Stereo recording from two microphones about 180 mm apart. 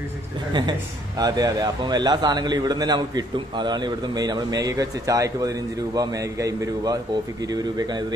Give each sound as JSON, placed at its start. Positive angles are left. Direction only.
{"t": 0.5, "sound": "a man's voice", "side_deg": -25}